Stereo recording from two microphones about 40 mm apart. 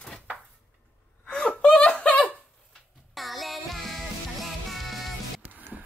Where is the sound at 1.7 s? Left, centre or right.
Left.